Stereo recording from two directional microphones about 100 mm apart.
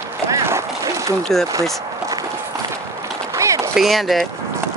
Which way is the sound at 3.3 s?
30° right (ahead or behind).